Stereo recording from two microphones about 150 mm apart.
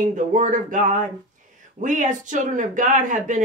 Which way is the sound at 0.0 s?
55° right (ahead or behind).